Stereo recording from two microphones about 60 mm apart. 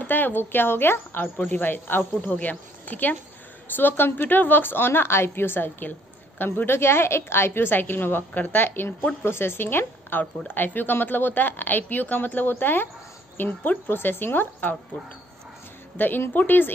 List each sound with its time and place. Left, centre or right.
0.0 s a woman's voice: left
16.0 s a woman's voice: left